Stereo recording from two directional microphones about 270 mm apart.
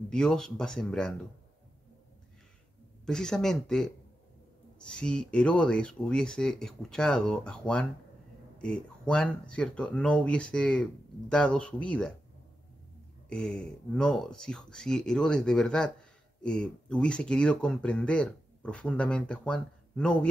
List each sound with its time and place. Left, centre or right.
0.1 s speech: centre
3.1 s speech: centre
13.3 s speech: centre